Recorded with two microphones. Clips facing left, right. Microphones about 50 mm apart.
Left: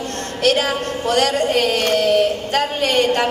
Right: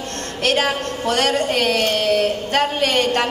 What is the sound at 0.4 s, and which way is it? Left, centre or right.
A woman's voice, right.